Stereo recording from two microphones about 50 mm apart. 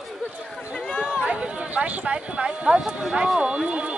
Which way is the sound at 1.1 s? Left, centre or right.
Right.